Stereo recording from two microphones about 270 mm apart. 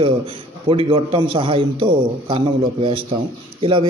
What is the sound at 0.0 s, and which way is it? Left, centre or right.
A man's voice, centre.